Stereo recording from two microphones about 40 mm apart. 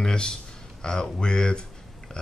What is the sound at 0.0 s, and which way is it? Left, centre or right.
Speech, centre.